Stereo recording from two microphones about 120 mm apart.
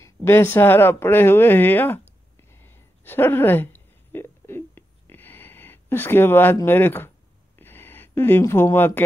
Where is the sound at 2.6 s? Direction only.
15° left (ahead or behind).